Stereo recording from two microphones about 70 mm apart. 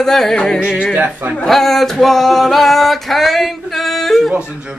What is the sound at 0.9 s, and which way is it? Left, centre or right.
Speech, right.